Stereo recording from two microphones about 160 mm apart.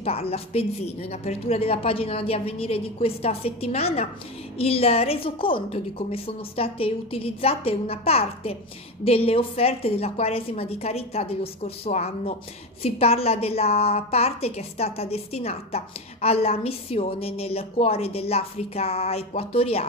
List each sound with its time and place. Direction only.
0.0 s a woman's voice: 40° left (ahead or behind)